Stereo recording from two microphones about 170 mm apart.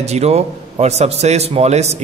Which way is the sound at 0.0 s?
40° right (ahead or behind).